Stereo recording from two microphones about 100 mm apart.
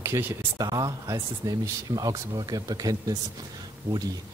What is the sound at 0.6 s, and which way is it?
Speech, 40° right (ahead or behind).